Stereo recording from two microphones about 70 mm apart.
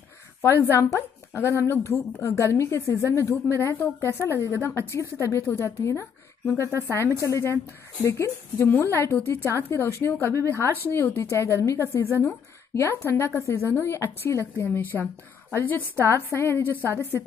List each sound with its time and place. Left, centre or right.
0.4 s a woman's voice: left
2.9 s a woman's voice: left
14.6 s a woman's voice: left
16.3 s a woman's voice: left